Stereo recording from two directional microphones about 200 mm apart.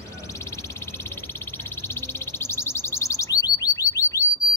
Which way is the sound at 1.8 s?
10° left (ahead or behind).